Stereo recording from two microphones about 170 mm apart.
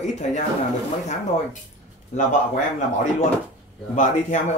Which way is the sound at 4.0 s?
45° left (ahead or behind).